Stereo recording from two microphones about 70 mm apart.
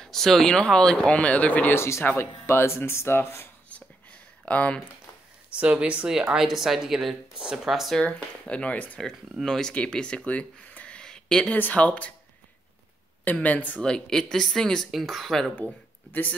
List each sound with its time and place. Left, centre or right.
0.0 s speech: centre; by 1.8 s left
1.8 s speech: left
4.5 s speech: centre
5.5 s speech: centre
6.3 s speech: centre
8.0 s speech: centre
9.4 s speech: centre
11.5 s speech: left
13.2 s speech: left
13.8 s speech: centre
14.9 s speech: centre
15.5 s speech: left